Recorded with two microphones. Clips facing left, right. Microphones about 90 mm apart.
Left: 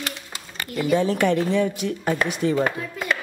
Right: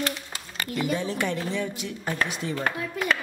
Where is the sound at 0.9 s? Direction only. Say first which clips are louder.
Left 11 dB; 60° left (ahead or behind).